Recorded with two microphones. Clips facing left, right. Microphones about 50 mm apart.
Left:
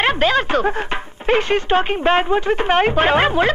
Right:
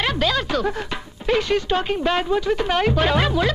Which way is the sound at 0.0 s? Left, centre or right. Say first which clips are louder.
Left 5 dB; left.